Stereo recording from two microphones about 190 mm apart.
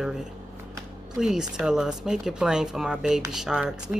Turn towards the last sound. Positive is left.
turn(degrees=-5)  # may be behind; listen again after turning